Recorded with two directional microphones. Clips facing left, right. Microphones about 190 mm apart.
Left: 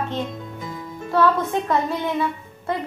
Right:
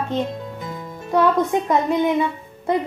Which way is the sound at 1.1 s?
20° right (ahead or behind).